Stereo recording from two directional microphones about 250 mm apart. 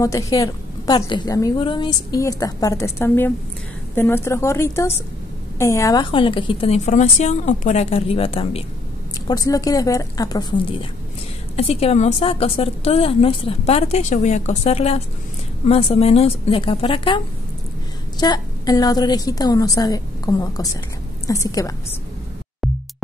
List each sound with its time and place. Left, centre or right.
0.0 s a woman's voice: centre
18.2 s a woman's voice: centre